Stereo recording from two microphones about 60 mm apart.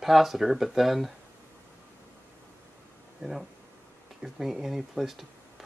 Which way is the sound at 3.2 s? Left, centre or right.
Centre.